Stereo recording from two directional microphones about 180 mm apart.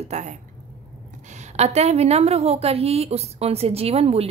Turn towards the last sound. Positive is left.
turn(degrees=-35)  # may be behind; listen again after turning